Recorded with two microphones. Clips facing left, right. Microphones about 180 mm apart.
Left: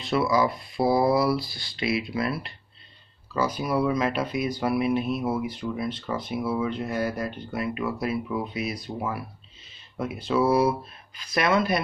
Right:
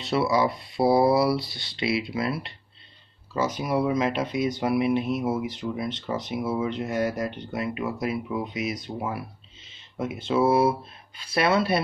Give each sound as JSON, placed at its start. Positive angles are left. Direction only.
{"t": 0.0, "sound": "speech", "side_deg": -25}